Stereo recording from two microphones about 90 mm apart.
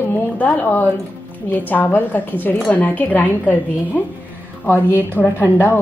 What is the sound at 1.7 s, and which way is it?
A woman's voice, 20° left (ahead or behind).